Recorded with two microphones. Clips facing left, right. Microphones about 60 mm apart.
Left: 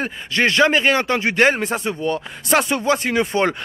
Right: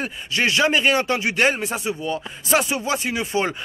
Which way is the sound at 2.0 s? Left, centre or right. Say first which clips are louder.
Left 4 dB; left.